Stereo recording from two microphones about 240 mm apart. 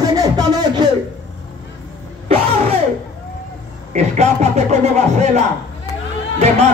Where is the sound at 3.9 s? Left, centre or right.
Right.